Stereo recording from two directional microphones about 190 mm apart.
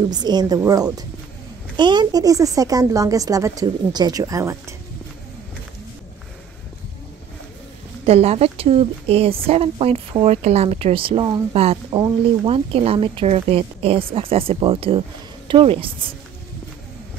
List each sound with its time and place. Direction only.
0.1 s a woman's voice: 20° right (ahead or behind)
8.0 s a woman's voice: 30° right (ahead or behind)